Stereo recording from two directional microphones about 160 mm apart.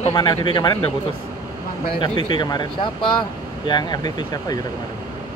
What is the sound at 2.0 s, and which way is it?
Speech, 30° left (ahead or behind).